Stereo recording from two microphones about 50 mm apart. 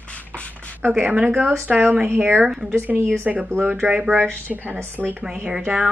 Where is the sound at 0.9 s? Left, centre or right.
Right.